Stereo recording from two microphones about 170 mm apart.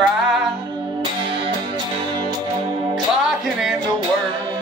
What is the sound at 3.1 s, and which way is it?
Music, centre (ahead or behind).